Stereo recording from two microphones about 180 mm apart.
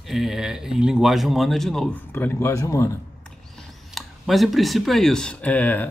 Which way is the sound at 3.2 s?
Centre (ahead or behind).